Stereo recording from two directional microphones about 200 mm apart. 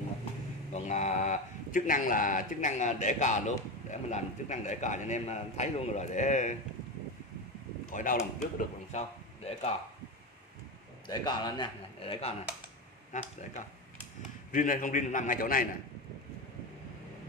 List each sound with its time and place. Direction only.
0.7 s speech: 35° left (ahead or behind)
7.9 s speech: 40° left (ahead or behind)
11.1 s speech: 20° left (ahead or behind); by 13.3 s 40° left (ahead or behind)
14.5 s speech: 40° left (ahead or behind)